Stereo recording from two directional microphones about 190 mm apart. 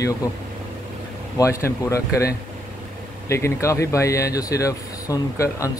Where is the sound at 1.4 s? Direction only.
15° left (ahead or behind).